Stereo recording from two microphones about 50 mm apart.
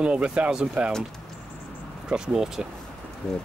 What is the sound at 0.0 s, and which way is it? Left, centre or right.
Speech, right.